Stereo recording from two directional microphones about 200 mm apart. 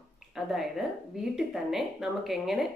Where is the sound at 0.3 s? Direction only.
Centre (ahead or behind).